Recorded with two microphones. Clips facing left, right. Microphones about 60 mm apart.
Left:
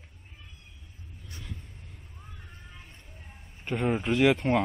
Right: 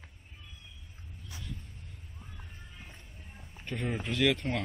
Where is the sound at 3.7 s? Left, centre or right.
Left.